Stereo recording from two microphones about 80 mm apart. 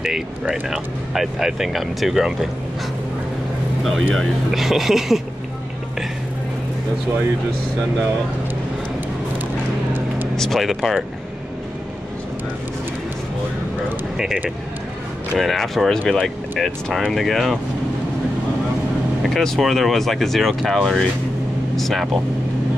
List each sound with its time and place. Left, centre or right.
0.7 s speech: centre
3.8 s speech: centre
10.3 s speech: centre
14.1 s speech: centre
19.2 s speech: centre